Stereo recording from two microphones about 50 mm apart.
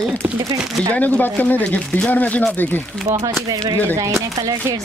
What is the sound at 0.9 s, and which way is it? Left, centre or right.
Speech, left.